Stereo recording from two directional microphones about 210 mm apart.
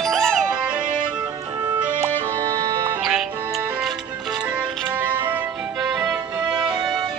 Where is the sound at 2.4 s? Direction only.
15° right (ahead or behind).